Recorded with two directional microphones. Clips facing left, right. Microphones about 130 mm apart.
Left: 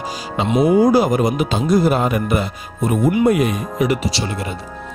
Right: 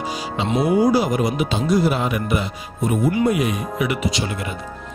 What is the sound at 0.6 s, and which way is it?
Speech, 50° left (ahead or behind).